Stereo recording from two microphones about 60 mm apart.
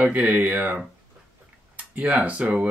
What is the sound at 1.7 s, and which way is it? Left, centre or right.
Speech, right.